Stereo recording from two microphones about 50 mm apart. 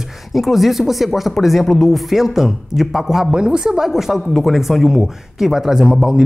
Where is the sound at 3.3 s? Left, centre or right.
Centre.